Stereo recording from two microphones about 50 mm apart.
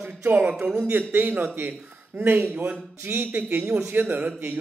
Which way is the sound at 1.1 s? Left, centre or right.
Right.